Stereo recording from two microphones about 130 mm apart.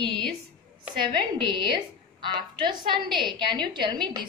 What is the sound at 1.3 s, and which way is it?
A woman's voice, 40° right (ahead or behind).